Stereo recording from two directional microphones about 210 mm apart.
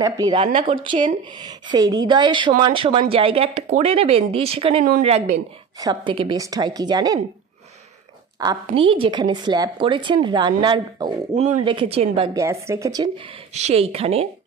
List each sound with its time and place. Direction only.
0.0 s a woman's voice: 20° right (ahead or behind)
8.4 s speech: 20° right (ahead or behind)
12.4 s a woman's voice: 15° right (ahead or behind)
13.5 s speech: 30° right (ahead or behind)